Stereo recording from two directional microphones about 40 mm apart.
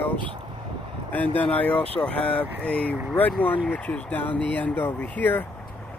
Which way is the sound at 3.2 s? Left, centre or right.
Left.